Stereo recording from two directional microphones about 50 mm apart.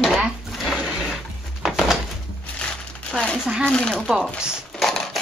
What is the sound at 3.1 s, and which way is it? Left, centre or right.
Speech, centre.